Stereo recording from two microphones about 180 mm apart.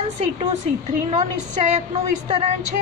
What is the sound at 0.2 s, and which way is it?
A woman's voice, 40° right (ahead or behind).